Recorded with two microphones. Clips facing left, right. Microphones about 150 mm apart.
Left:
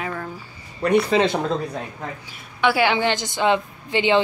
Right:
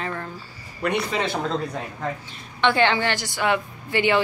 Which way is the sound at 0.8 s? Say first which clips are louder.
Left 6 dB; 30° left (ahead or behind).